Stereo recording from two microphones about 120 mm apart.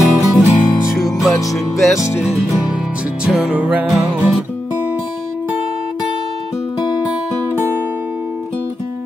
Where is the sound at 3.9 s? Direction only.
Centre (ahead or behind).